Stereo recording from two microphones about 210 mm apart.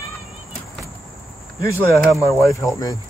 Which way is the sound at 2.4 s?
15° left (ahead or behind).